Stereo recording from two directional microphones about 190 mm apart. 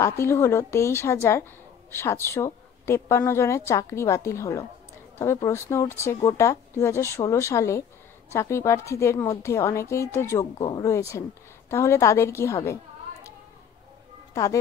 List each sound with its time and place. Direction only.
0.0 s a woman's voice: 15° left (ahead or behind)
14.3 s speech: 15° left (ahead or behind)